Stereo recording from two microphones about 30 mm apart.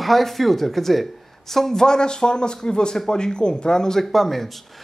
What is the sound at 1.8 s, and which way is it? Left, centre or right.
Speech, left.